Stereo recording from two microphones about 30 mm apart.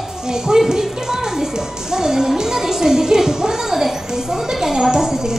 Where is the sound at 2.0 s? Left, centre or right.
Centre.